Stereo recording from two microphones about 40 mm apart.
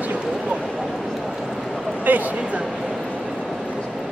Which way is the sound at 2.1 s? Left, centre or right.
Right.